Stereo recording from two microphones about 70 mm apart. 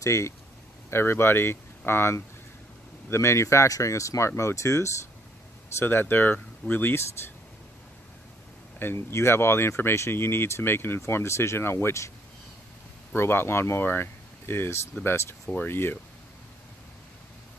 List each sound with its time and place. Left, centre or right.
0.0 s speech: left
5.8 s speech: left
8.7 s speech: left
13.1 s speech: left